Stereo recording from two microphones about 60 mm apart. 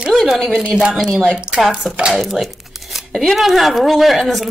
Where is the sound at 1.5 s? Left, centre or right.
Centre.